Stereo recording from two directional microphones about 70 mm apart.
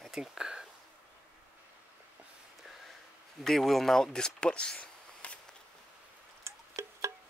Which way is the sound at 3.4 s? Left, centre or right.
Centre.